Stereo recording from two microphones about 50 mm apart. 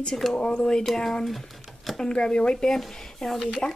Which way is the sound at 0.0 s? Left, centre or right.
Centre.